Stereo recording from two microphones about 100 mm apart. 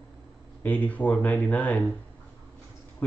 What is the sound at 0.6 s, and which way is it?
Speech, 15° left (ahead or behind).